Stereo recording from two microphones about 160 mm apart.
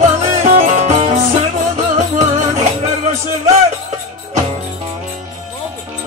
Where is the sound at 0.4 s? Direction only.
50° right (ahead or behind).